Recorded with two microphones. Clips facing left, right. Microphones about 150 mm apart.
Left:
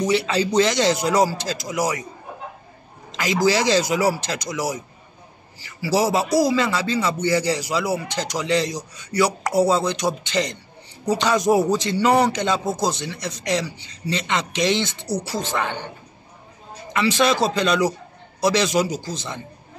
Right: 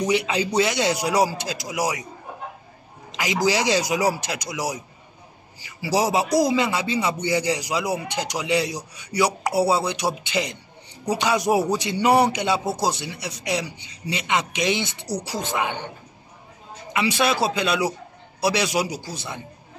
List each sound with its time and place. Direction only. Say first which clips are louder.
0.0 s a man's voice: left 2 dB; 15° right (ahead or behind)
3.1 s a sound: left 2 dB; 15° right (ahead or behind)
3.4 s a man's voice: left 3 dB; 15° right (ahead or behind)
16.9 s a man's voice: left 3 dB; 10° right (ahead or behind)